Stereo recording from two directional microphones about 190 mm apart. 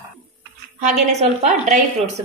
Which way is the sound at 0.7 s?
40° right (ahead or behind).